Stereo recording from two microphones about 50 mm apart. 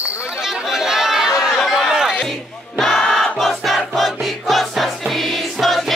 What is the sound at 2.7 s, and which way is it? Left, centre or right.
Choir, centre.